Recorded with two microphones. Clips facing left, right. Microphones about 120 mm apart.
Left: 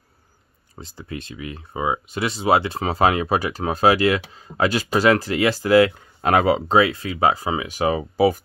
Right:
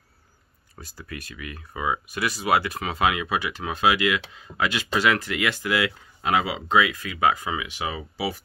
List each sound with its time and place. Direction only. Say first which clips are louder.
0.7 s speech: left 5 dB; 25° left (ahead or behind); by 8.4 s 45° left (ahead or behind)